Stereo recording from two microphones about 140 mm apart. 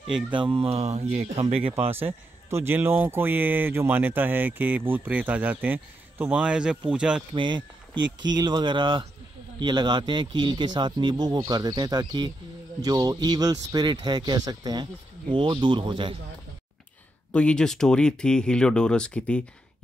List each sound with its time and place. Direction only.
0.3 s mantra: 35° right (ahead or behind)
2.0 s speech: 15° right (ahead or behind)
7.3 s speech: 35° right (ahead or behind)
17.3 s speech: 10° left (ahead or behind)